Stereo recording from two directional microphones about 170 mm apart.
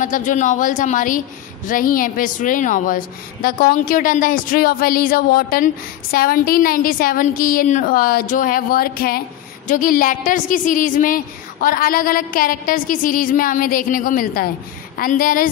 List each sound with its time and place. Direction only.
0.0 s a woman's voice: 50° left (ahead or behind)